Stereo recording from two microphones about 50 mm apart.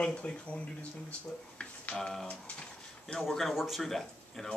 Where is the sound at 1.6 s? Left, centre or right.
Left.